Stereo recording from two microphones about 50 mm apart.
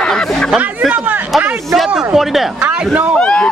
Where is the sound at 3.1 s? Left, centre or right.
Centre.